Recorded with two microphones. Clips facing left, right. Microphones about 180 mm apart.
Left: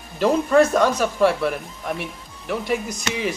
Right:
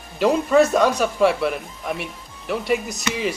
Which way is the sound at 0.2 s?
10° right (ahead or behind).